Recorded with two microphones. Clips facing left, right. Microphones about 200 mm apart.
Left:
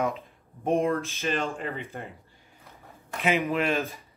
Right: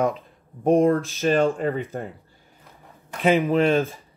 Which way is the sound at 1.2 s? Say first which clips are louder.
Right 14 dB; 45° right (ahead or behind).